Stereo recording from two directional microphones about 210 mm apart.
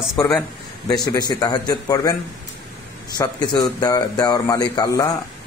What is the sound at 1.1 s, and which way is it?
Speech, 20° left (ahead or behind).